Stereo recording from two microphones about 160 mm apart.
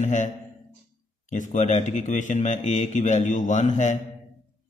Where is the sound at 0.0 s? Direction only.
50° left (ahead or behind).